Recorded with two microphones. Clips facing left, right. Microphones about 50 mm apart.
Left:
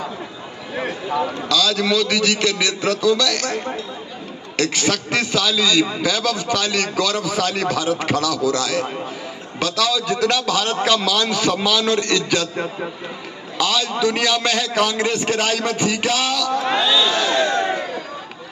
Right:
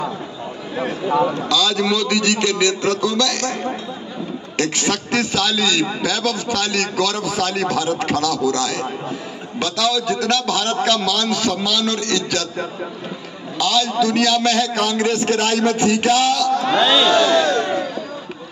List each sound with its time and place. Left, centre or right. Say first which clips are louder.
1.5 s a man's voice: even; centre
2.8 s a man's voice: left 1 dB; centre
4.6 s a man's voice: left 1 dB; centre
13.7 s a man's voice: right 3 dB; centre
14.7 s a man's voice: even; centre
16.5 s speech: right 2 dB; centre
16.8 s speech: right 4 dB; right
17.4 s crowd: right 1 dB; left